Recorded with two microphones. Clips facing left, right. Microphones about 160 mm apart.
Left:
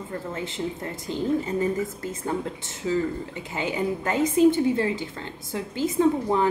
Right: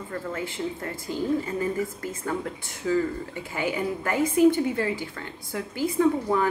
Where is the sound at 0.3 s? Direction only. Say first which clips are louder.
Even; 20° left (ahead or behind).